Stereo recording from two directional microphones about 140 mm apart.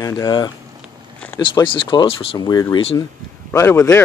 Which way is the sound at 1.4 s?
35° left (ahead or behind).